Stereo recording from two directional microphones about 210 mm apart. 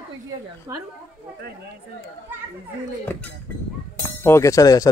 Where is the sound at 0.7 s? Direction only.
10° right (ahead or behind).